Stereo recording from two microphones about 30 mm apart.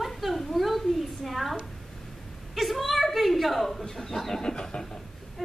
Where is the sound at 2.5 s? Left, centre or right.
Centre.